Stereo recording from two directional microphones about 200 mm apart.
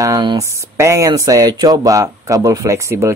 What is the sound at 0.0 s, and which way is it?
Speech, 20° right (ahead or behind).